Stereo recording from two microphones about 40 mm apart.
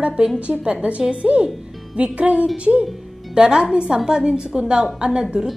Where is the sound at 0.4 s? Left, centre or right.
Right.